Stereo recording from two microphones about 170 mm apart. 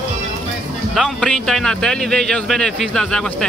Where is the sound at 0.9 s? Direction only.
Centre (ahead or behind).